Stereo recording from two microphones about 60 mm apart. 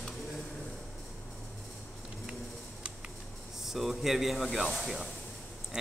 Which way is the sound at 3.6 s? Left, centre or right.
Centre.